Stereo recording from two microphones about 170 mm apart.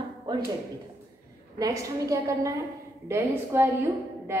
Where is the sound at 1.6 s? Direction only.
20° right (ahead or behind).